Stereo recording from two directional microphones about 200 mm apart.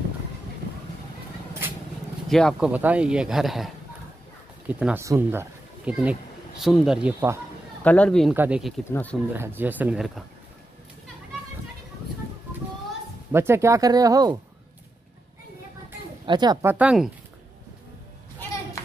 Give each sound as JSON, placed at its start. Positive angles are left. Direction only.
{"t": 2.2, "sound": "speech", "side_deg": 0}
{"t": 7.8, "sound": "speech", "side_deg": 5}
{"t": 8.9, "sound": "speech", "side_deg": 10}
{"t": 9.6, "sound": "speech", "side_deg": -10}
{"t": 13.3, "sound": "speech", "side_deg": -10}
{"t": 16.3, "sound": "speech", "side_deg": -20}
{"t": 16.7, "sound": "speech", "side_deg": -5}